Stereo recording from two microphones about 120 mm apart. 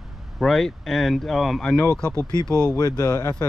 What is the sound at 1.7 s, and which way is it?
Speech, 20° left (ahead or behind).